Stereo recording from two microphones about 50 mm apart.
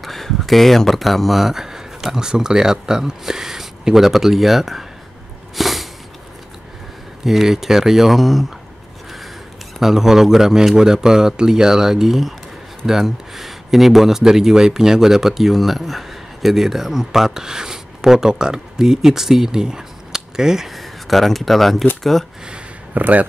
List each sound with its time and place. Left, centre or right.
0.0 s speech: centre
5.6 s a sound: centre
7.2 s a man's voice: centre
9.8 s a man's voice: centre
22.9 s speech: right